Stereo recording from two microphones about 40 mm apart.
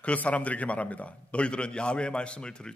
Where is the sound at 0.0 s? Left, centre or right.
Left.